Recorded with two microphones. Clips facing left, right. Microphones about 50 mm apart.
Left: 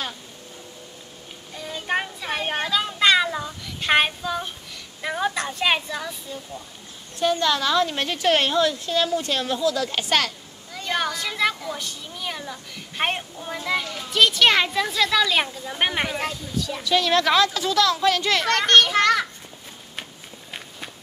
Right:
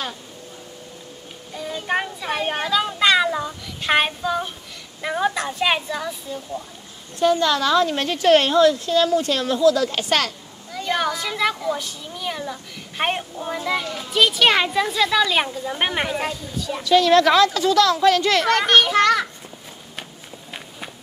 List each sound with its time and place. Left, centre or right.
1.5 s a woman's voice: centre
7.2 s speech: right
10.7 s a woman's voice: centre
16.8 s speech: right
18.5 s a woman's voice: centre